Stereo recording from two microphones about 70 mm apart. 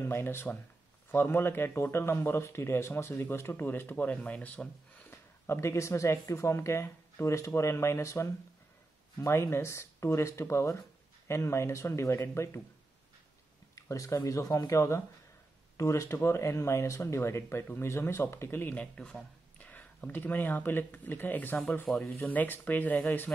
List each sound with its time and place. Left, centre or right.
0.0 s speech: left
3.9 s speech: left
5.5 s speech: left
13.7 s speech: left
18.9 s speech: centre
19.6 s speech: left